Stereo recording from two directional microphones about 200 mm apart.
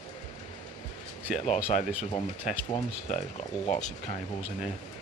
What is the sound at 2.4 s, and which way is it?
Speech, 35° left (ahead or behind).